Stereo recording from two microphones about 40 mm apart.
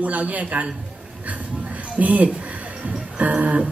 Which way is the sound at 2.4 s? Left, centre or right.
Right.